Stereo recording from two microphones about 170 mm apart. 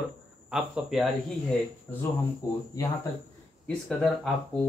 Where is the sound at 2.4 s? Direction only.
20° left (ahead or behind).